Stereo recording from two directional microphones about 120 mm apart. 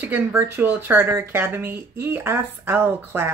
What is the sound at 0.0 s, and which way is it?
Speech, 15° right (ahead or behind).